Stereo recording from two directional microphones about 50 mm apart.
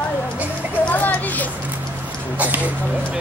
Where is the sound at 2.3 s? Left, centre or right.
Right.